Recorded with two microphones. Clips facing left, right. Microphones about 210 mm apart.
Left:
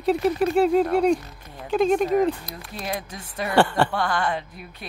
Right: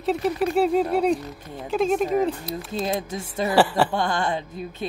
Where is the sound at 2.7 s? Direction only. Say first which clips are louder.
Right 4 dB; 25° right (ahead or behind).